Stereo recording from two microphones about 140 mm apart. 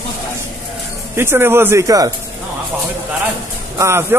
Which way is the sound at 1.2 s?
15° right (ahead or behind).